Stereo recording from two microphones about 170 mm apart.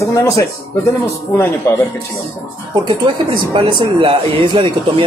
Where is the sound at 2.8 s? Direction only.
30° right (ahead or behind).